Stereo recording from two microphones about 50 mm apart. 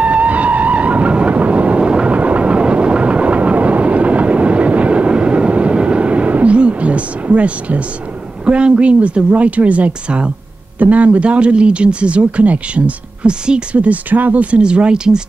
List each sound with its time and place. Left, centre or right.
0.0 s train: right
8.5 s speech: right